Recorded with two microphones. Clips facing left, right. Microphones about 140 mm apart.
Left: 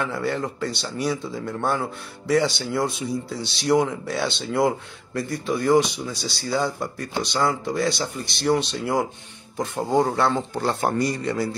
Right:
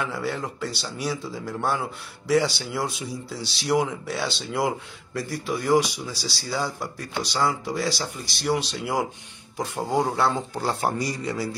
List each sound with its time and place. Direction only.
0.0 s speech: centre (ahead or behind)